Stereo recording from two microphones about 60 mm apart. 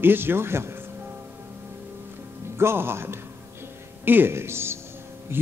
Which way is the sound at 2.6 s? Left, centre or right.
Right.